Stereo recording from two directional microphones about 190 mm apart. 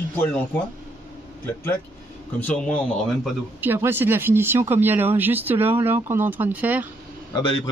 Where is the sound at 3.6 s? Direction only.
10° right (ahead or behind).